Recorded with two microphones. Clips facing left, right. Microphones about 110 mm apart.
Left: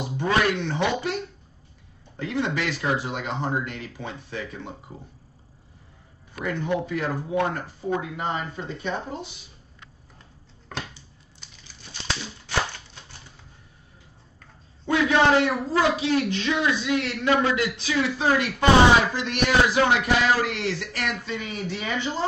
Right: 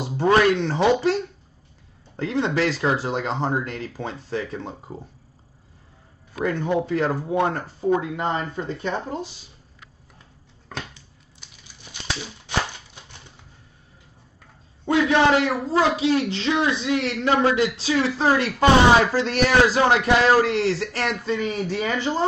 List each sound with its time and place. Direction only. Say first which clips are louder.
0.0 s a man's voice: right 5 dB; 35° right (ahead or behind)
2.2 s a man's voice: right 4 dB; 30° right (ahead or behind)
6.7 s a man's voice: right 4 dB; 30° right (ahead or behind)
10.7 s a sound: even; centre (ahead or behind)
14.9 s a man's voice: right 2 dB; 25° right (ahead or behind)